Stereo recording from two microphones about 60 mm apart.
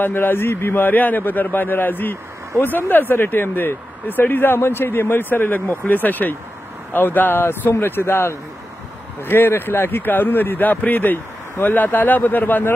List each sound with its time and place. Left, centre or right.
0.0 s speech: left